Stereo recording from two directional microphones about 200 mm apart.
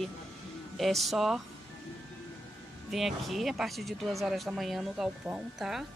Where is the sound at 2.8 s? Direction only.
Centre (ahead or behind).